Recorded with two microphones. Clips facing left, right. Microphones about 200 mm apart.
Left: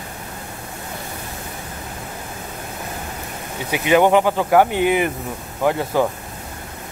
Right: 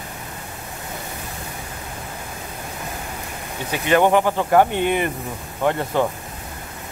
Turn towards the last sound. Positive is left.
turn(degrees=5)  # may be behind; listen again after turning